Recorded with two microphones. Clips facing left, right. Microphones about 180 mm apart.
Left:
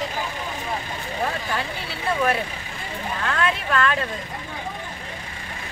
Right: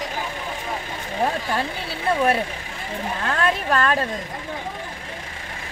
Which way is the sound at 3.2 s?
40° right (ahead or behind).